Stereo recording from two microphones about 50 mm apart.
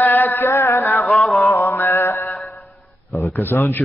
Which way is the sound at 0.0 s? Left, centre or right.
Left.